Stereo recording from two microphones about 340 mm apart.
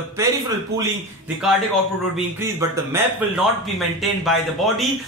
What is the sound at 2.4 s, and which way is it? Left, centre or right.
Speech, centre.